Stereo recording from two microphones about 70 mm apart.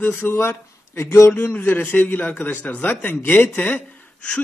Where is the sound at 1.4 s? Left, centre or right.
Left.